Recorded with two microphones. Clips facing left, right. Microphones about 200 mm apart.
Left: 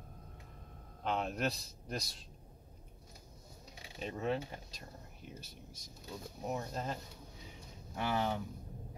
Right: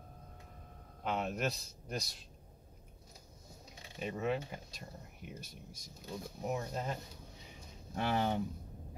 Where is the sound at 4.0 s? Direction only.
5° right (ahead or behind).